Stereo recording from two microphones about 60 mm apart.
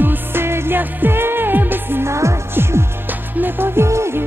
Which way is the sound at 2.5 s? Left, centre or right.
Right.